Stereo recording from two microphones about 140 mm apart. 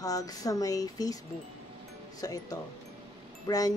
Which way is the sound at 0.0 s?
25° left (ahead or behind).